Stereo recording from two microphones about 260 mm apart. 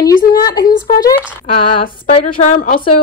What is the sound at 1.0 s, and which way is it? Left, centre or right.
Speech, centre.